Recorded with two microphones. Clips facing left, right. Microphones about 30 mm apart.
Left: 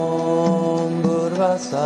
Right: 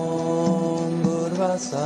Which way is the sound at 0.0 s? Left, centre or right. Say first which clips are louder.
Left 4 dB; centre.